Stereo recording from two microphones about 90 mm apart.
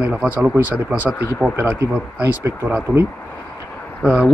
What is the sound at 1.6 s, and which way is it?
Speech, 25° right (ahead or behind).